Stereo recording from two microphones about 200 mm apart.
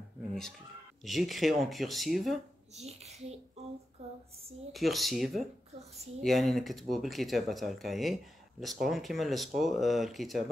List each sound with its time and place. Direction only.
0.3 s a sound: centre (ahead or behind)
1.0 s speech: centre (ahead or behind)
2.7 s a child's voice: 35° right (ahead or behind)
4.7 s speech: centre (ahead or behind)